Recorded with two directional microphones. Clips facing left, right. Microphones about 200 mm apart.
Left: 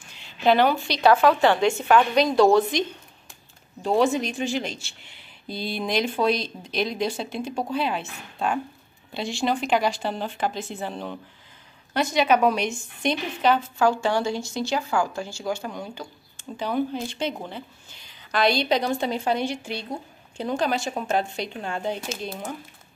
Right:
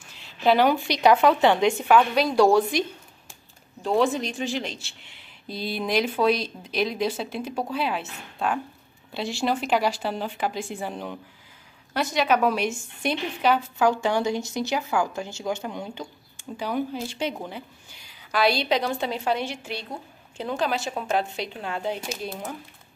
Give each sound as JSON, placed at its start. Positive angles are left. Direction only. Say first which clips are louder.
{"t": 0.1, "sound": "a woman's voice", "louder": "left 1 dB", "side_deg": 0}
{"t": 3.8, "sound": "a woman's voice", "louder": "left 1 dB", "side_deg": 0}
{"t": 16.5, "sound": "speech", "louder": "left 2 dB", "side_deg": -10}